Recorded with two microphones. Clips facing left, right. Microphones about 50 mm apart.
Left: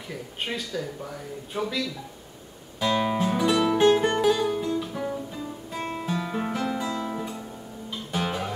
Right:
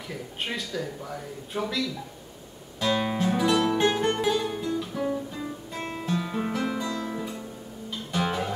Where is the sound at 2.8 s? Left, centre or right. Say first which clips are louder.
Left 2 dB; centre.